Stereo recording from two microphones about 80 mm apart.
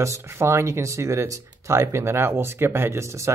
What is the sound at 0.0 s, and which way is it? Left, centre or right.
Speech, right.